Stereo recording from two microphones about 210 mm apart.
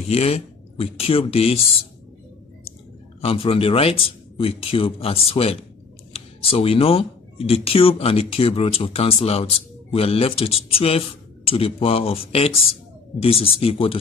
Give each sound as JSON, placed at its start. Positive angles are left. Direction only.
{"t": 0.1, "sound": "speech", "side_deg": 30}
{"t": 3.2, "sound": "speech", "side_deg": 25}